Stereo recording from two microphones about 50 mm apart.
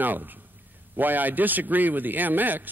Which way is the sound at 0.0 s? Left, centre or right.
Right.